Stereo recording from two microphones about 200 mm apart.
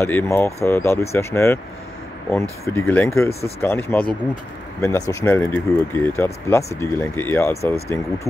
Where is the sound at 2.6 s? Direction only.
10° left (ahead or behind).